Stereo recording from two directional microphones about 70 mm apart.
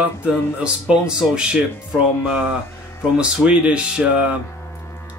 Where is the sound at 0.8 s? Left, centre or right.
Centre.